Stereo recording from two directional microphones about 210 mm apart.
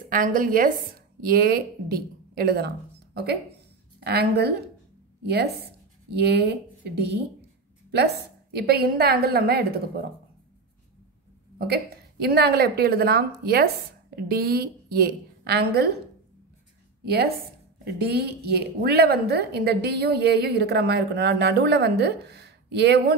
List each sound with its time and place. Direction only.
0.1 s a woman's voice: 40° right (ahead or behind)
4.0 s a woman's voice: 50° right (ahead or behind)
8.5 s a woman's voice: 50° right (ahead or behind)
11.5 s a woman's voice: 50° right (ahead or behind)
17.0 s a woman's voice: 50° right (ahead or behind)